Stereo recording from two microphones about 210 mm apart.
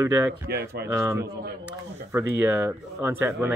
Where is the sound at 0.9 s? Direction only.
15° right (ahead or behind).